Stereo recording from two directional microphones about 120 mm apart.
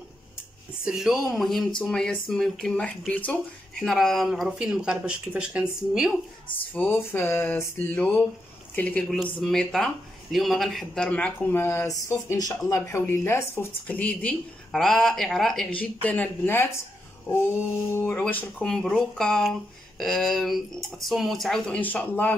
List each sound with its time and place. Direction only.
0.8 s speech: 5° right (ahead or behind); by 3.3 s 15° left (ahead or behind)
3.8 s speech: centre (ahead or behind)
6.7 s speech: 15° left (ahead or behind); by 11.1 s centre (ahead or behind)
11.1 s speech: 10° left (ahead or behind)
11.6 s speech: 25° left (ahead or behind); by 15.7 s centre (ahead or behind)
15.8 s speech: 15° left (ahead or behind)
17.9 s speech: 15° left (ahead or behind)
21.7 s speech: 15° left (ahead or behind)